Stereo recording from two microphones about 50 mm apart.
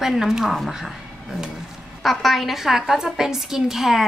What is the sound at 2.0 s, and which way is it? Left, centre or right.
A woman's voice, centre.